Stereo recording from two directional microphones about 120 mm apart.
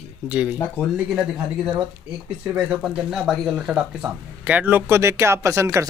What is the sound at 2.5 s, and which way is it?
Speech, 5° right (ahead or behind).